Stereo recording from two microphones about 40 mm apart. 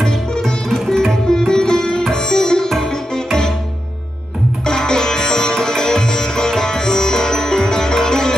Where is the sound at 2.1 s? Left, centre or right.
Centre.